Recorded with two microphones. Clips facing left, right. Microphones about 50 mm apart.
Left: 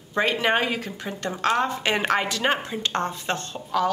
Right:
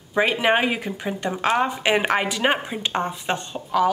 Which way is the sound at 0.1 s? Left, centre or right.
Centre.